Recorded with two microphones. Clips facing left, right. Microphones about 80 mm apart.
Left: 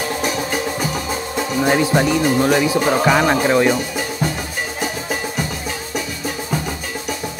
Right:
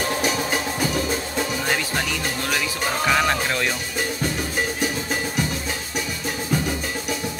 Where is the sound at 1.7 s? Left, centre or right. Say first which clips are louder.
Left 9 dB; left.